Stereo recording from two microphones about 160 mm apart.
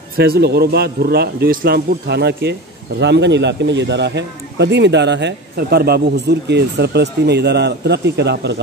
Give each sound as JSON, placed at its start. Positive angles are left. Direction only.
{"t": 0.2, "sound": "a man's voice", "side_deg": -90}